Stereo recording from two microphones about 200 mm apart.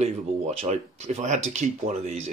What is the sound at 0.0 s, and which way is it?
Speech, 30° right (ahead or behind).